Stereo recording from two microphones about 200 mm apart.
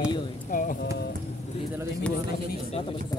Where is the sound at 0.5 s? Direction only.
45° left (ahead or behind).